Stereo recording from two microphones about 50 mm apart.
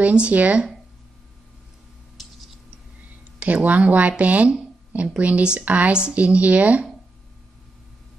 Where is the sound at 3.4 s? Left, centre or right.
Right.